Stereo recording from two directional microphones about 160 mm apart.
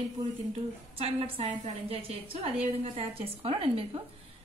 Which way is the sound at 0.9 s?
35° right (ahead or behind).